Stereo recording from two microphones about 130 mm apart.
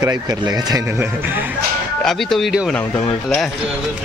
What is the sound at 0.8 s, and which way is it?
Speech, 15° right (ahead or behind).